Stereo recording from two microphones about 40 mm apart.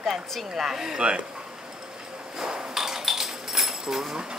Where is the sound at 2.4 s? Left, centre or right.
Centre.